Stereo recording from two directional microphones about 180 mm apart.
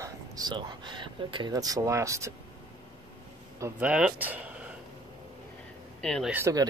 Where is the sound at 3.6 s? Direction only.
5° right (ahead or behind).